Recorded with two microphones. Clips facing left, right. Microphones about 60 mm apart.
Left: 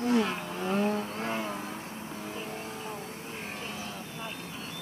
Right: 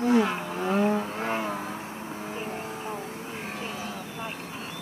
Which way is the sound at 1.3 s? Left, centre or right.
Right.